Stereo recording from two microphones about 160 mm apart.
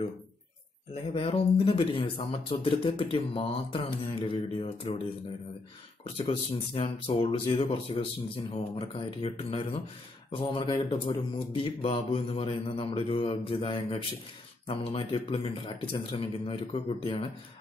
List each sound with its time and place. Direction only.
1.1 s speech: 35° left (ahead or behind)
6.1 s speech: 35° left (ahead or behind)